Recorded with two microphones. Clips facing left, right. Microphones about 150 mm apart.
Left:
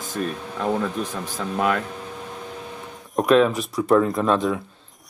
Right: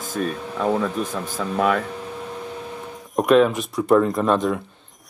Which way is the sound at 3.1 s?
Centre (ahead or behind).